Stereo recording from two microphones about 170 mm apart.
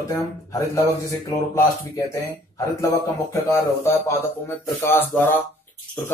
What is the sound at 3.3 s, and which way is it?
Speech, 20° left (ahead or behind).